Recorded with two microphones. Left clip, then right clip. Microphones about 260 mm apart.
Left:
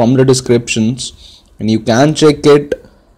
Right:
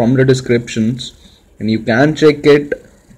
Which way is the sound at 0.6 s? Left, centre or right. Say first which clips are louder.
Left 3 dB; left.